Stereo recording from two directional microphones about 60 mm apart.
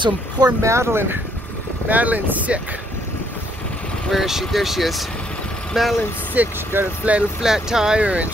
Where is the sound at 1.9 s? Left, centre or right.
Right.